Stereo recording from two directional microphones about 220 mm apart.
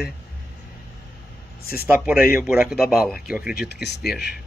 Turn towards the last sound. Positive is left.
turn(degrees=0)  # may be behind; listen again after turning